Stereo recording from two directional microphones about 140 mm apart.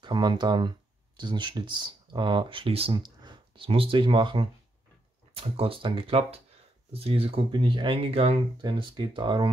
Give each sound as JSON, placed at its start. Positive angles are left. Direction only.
{"t": 0.0, "sound": "speech", "side_deg": -35}